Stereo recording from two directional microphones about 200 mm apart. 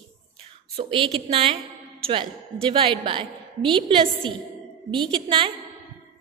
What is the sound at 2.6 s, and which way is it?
A woman's voice, 25° right (ahead or behind).